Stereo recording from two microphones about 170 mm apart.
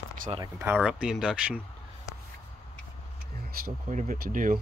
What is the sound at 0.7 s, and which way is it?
Speech, 5° right (ahead or behind).